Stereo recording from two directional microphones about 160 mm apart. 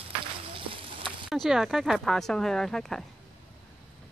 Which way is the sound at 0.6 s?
35° right (ahead or behind).